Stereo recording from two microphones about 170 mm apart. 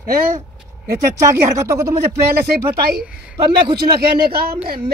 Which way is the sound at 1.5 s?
15° right (ahead or behind).